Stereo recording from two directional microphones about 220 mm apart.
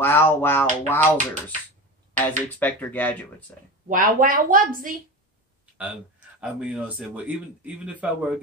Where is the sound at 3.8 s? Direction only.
40° right (ahead or behind).